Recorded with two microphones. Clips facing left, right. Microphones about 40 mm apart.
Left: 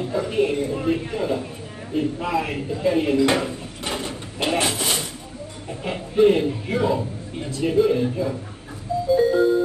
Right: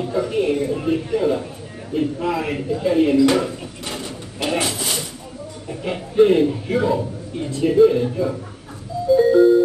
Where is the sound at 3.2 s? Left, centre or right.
Left.